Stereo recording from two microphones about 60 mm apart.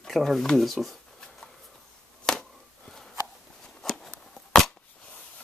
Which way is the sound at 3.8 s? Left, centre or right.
Centre.